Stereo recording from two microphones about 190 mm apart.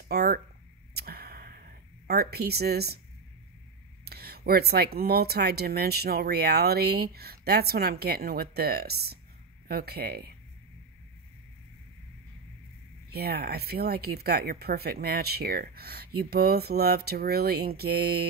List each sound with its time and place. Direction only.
0.1 s a sound: 55° right (ahead or behind)
4.0 s speech: 55° right (ahead or behind)
13.1 s speech: 55° right (ahead or behind)